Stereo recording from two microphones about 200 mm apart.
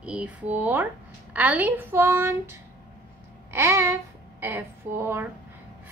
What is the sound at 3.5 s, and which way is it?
Babbling, 15° right (ahead or behind).